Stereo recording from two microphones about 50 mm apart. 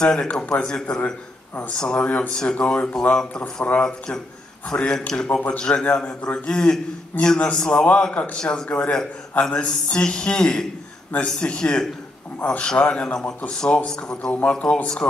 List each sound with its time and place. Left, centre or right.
0.0 s a man's voice: centre
3.2 s a man's voice: centre
4.6 s a man's voice: left